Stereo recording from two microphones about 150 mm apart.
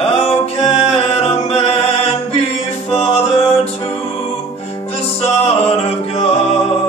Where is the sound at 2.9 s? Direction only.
40° left (ahead or behind).